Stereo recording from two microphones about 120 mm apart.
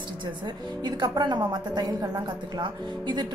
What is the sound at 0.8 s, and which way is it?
A woman's voice, 40° right (ahead or behind).